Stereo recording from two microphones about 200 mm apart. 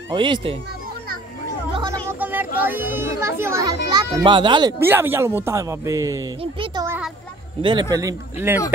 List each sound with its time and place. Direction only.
0.1 s a child's voice: 25° right (ahead or behind)
1.7 s speech: 20° right (ahead or behind)
6.4 s a sound: 25° right (ahead or behind)
7.9 s speech: 15° right (ahead or behind)